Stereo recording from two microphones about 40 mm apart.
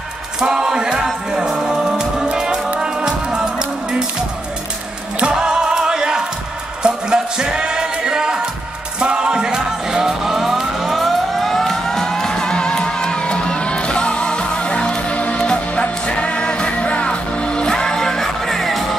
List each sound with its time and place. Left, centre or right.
0.4 s music: centre
5.2 s music: right; by 11.5 s centre
11.5 s music: centre